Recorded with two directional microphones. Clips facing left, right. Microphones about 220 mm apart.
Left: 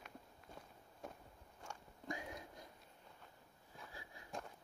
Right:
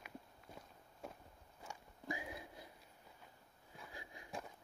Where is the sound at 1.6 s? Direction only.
5° right (ahead or behind).